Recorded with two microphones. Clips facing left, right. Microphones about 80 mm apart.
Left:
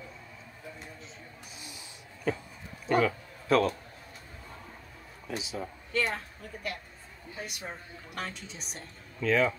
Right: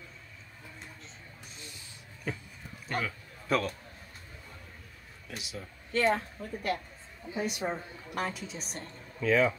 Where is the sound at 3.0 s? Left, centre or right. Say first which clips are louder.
Left 9 dB; centre.